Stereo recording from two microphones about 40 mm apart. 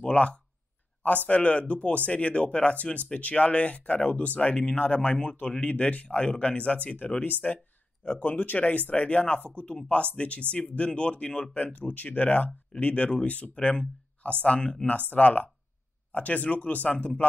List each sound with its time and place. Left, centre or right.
0.0 s speech: left
15.0 s speech: left